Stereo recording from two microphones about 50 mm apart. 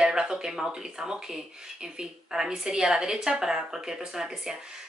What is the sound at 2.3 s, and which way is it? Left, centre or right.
Speech, centre.